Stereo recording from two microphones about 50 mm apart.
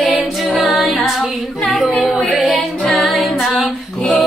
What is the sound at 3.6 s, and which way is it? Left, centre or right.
Female singing, centre.